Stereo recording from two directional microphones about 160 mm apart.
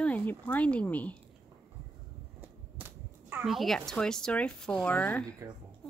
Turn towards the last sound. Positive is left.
turn(degrees=10)  # may be behind; listen again after turning